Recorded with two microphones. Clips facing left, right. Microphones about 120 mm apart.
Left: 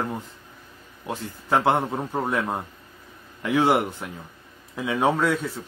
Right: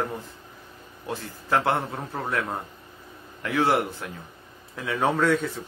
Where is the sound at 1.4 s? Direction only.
20° left (ahead or behind).